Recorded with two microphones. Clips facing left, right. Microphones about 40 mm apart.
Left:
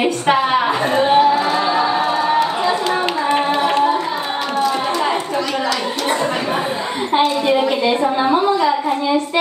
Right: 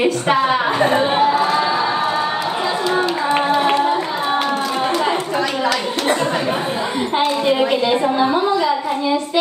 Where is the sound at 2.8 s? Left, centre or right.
Left.